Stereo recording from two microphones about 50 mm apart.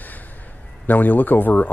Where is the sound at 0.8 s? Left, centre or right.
Left.